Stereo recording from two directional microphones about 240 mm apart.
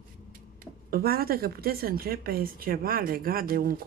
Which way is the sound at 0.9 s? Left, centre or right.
Right.